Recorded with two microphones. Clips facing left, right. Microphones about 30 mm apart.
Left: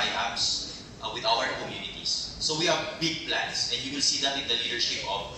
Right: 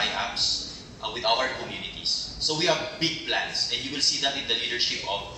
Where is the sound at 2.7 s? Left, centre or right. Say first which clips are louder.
Right 2 dB; centre.